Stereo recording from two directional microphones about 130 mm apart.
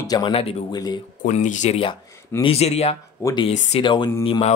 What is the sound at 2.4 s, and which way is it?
Speech, 50° left (ahead or behind).